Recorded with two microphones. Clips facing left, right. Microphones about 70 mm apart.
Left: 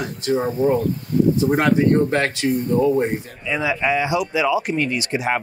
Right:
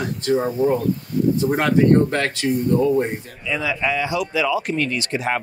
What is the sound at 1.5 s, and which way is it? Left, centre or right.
Speech, centre.